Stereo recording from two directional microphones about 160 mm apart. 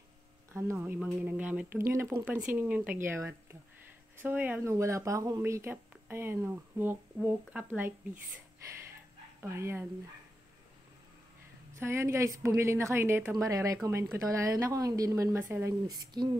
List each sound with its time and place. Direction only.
0.5 s speech: 15° right (ahead or behind)
9.4 s speech: 15° right (ahead or behind)
11.8 s a woman's voice: 15° right (ahead or behind)